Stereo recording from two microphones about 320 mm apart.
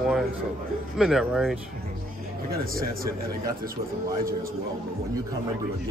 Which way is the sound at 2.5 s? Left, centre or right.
Right.